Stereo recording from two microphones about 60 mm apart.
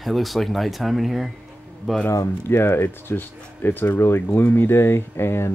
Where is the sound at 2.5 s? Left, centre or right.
Left.